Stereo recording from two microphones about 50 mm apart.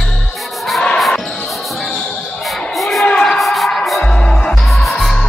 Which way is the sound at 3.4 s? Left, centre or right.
Centre.